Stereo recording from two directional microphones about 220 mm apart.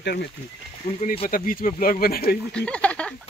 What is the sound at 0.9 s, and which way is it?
Speech, 30° left (ahead or behind).